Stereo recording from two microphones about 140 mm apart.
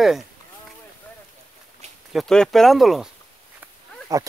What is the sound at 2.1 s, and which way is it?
Speech, centre (ahead or behind).